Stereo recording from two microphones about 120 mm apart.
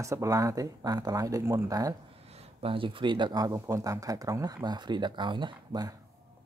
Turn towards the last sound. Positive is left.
turn(degrees=-35)  # may be behind; listen again after turning